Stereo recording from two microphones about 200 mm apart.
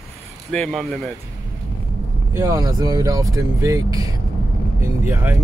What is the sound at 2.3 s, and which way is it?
Speech, 15° right (ahead or behind).